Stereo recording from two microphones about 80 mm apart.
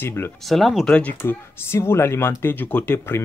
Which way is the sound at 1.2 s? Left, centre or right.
Left.